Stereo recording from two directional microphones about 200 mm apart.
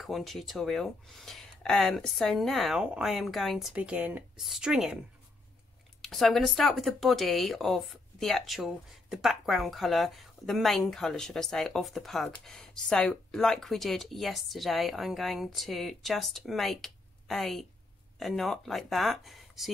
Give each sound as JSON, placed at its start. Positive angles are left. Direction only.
{"t": 0.0, "sound": "speech", "side_deg": 0}
{"t": 5.9, "sound": "speech", "side_deg": 0}